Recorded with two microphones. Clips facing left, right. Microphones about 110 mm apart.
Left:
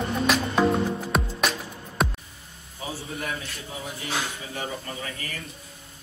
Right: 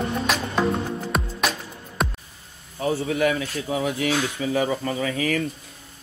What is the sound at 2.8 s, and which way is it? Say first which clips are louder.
Speech: right 11 dB; 60° right (ahead or behind).